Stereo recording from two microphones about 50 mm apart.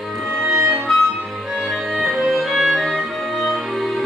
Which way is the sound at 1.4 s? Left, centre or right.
Centre.